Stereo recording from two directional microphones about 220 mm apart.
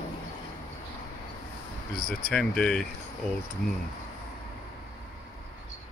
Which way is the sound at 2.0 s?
5° left (ahead or behind).